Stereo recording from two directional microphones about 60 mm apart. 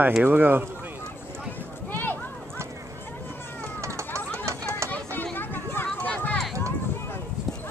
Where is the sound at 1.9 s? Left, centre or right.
Left.